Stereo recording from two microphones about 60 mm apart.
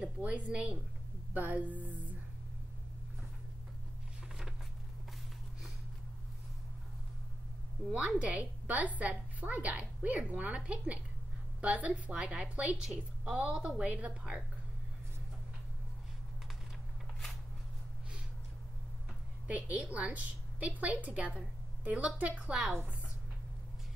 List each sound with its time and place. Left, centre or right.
0.0 s a woman's voice: right
8.2 s a woman's voice: right
19.4 s a woman's voice: right
22.5 s a woman's voice: centre